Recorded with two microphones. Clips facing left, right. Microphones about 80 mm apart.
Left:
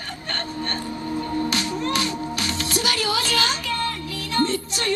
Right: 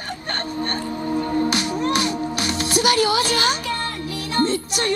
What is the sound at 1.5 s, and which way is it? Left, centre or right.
Music, centre.